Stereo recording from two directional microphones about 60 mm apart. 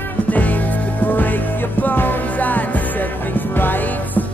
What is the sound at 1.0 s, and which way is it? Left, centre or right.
Music, left.